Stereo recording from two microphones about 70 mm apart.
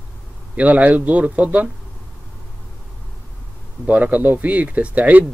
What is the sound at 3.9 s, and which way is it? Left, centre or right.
Speech, right.